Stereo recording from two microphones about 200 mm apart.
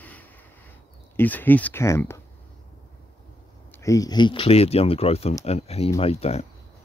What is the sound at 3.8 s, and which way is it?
Speech, 15° left (ahead or behind).